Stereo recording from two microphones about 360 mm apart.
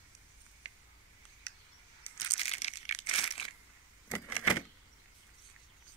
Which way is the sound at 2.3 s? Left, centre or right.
Centre.